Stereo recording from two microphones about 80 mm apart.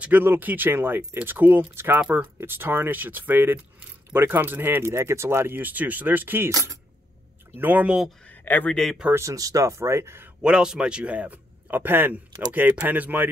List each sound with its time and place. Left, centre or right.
0.0 s speech: right
2.0 s a man's voice: centre
2.4 s speech: right
7.5 s speech: right
8.3 s a sound: left
9.1 s speech: right
10.4 s a man's voice: centre